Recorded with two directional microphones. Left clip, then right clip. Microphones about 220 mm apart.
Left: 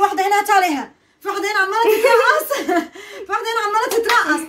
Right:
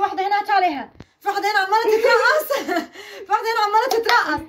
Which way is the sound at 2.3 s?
45° right (ahead or behind).